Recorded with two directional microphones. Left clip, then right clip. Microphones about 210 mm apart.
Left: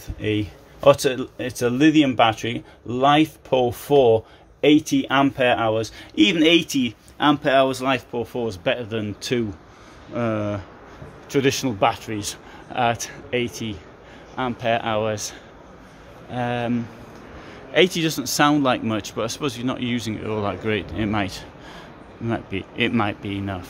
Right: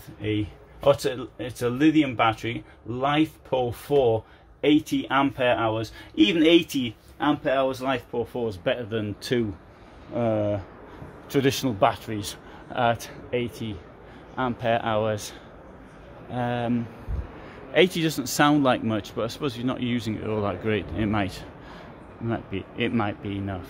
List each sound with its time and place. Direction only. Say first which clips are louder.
0.2 s speech: left 4 dB; 20° left (ahead or behind)
7.2 s speech: left 6 dB; 25° left (ahead or behind)
14.3 s speech: left 2 dB; 5° right (ahead or behind)
22.3 s speech: left 4 dB; 15° left (ahead or behind)